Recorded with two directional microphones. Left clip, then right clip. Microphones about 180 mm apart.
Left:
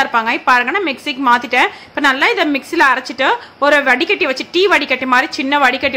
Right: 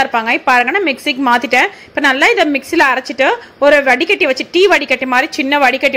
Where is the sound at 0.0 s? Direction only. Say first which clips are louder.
Right 1 dB; 20° right (ahead or behind).